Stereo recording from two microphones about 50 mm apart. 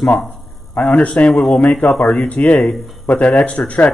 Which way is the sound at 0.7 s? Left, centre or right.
Left.